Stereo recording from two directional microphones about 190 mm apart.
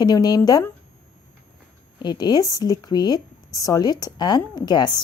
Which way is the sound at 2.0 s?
20° left (ahead or behind).